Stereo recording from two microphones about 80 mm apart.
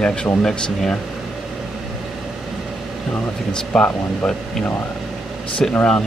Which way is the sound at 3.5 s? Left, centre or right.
Centre.